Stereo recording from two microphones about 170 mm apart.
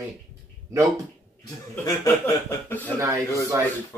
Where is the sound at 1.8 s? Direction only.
15° left (ahead or behind).